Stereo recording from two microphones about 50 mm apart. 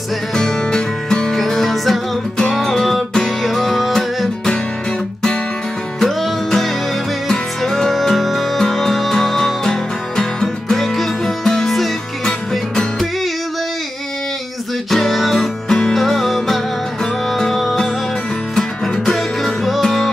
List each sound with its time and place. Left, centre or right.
0.3 s music: centre
1.3 s music: centre
5.9 s music: centre
14.9 s music: centre